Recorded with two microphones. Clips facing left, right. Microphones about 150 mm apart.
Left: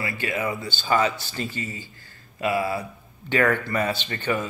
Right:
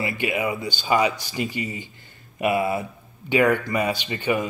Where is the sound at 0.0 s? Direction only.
20° right (ahead or behind).